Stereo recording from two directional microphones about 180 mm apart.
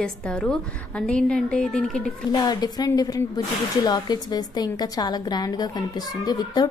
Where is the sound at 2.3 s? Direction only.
25° left (ahead or behind).